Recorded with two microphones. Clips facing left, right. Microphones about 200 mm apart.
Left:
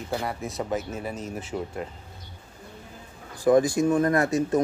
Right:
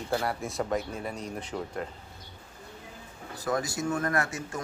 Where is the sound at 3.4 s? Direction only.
20° left (ahead or behind).